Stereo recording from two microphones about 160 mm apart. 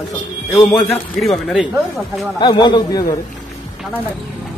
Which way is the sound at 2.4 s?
30° left (ahead or behind).